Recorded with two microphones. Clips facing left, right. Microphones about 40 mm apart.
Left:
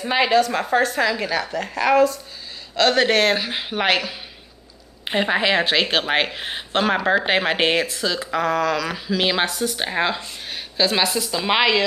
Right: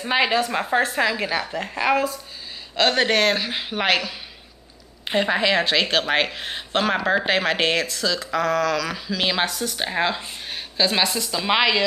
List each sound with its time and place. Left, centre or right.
0.0 s a woman's voice: centre
7.2 s speech: centre